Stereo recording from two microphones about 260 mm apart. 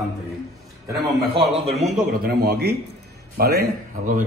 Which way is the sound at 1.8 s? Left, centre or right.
Right.